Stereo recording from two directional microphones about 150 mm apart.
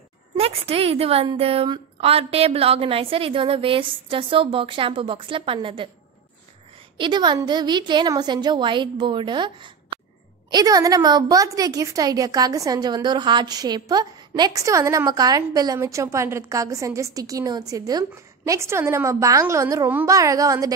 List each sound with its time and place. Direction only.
0.4 s a woman's voice: 40° right (ahead or behind)
7.0 s a woman's voice: 30° right (ahead or behind)